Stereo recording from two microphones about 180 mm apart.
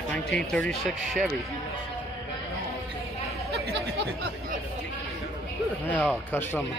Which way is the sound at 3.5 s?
65° right (ahead or behind).